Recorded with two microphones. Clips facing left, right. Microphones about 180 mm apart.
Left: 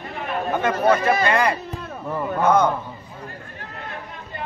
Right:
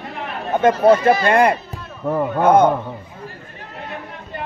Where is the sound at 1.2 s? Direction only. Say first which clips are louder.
Right 5 dB; 55° right (ahead or behind).